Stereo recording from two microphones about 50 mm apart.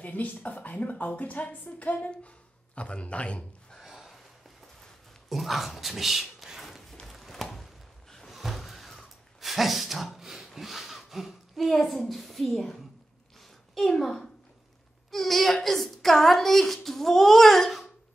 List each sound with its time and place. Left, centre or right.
0.0 s a woman's voice: left
3.8 s a sound: centre
5.3 s speech: centre
7.1 s a sound: centre
12.4 s a child's voice: centre
13.7 s a woman's voice: centre